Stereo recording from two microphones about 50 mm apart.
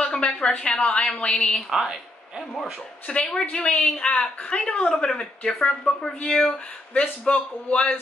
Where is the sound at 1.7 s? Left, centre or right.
Centre.